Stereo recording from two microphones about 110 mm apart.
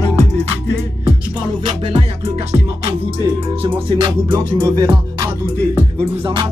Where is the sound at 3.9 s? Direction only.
45° right (ahead or behind).